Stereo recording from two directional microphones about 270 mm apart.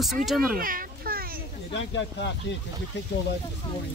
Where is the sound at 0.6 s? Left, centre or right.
Right.